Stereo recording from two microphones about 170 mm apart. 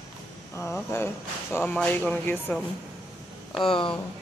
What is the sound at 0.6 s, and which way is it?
Speech, 15° left (ahead or behind).